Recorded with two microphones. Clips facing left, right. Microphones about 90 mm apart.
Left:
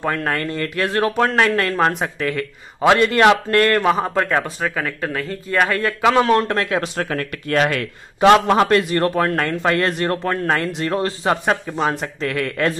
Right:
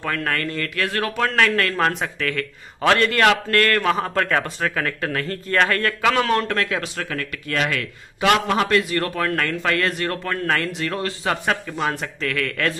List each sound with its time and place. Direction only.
0.0 s a man's voice: 25° left (ahead or behind)
6.1 s speech: 30° left (ahead or behind)